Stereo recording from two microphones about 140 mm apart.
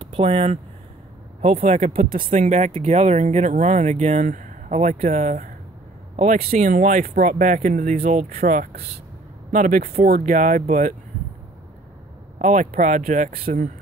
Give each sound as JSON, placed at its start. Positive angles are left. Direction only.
{"t": 0.0, "sound": "speech", "side_deg": -40}
{"t": 1.8, "sound": "speech", "side_deg": -80}
{"t": 9.5, "sound": "speech", "side_deg": -80}
{"t": 12.4, "sound": "speech", "side_deg": -65}